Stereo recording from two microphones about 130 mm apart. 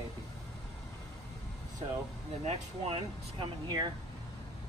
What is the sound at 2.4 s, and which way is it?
Speech, 50° right (ahead or behind).